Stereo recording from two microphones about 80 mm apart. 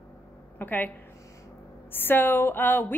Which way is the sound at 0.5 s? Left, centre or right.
Left.